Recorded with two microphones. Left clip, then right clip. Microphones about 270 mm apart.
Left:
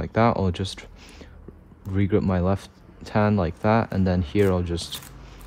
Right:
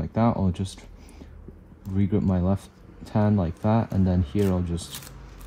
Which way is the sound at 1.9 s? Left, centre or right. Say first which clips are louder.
Left 4 dB; right.